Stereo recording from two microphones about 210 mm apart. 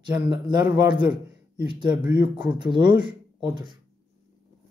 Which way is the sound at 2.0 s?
55° left (ahead or behind).